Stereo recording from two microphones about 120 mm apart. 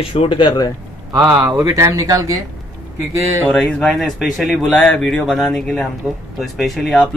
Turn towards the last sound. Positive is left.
turn(degrees=0)  # may be behind; listen again after turning